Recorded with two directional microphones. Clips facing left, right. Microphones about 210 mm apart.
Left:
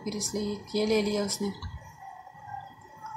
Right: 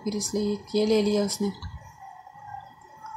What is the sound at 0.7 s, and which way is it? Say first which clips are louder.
Speech: right 4 dB; 20° right (ahead or behind).